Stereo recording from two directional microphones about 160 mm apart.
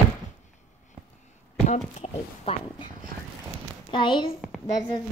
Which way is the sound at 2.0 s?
35° left (ahead or behind).